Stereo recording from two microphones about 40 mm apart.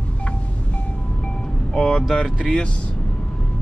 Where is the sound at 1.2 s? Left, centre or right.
Left.